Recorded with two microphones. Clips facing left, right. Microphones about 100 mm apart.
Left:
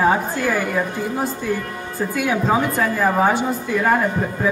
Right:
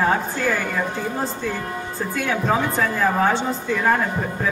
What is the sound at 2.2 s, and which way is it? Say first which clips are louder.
A woman's voice: left 2 dB; 10° left (ahead or behind).